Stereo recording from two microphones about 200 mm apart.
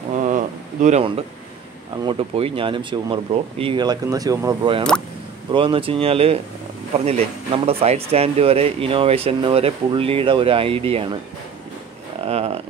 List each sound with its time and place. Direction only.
0.1 s a sound: 35° right (ahead or behind)
0.8 s speech: 30° right (ahead or behind)
12.3 s speech: 30° right (ahead or behind)